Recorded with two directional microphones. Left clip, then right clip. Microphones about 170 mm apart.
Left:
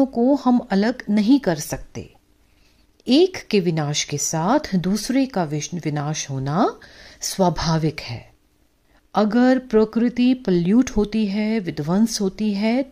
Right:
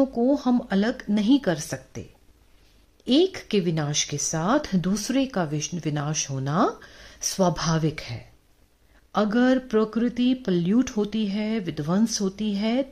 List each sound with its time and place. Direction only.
0.0 s speech: 25° left (ahead or behind)